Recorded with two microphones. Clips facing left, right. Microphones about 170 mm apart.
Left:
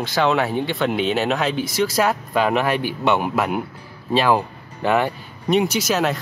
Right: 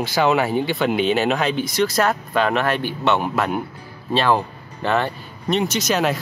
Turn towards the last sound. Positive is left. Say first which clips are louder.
# even
turn(degrees=5)  # may be behind; listen again after turning